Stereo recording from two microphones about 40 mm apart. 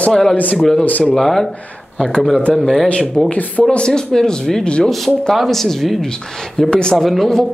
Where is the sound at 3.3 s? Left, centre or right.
Left.